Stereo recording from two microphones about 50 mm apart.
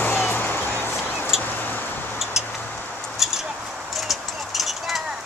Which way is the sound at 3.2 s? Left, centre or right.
Centre.